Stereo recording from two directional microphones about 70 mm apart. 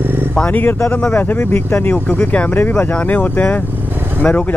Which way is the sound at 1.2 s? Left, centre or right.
Left.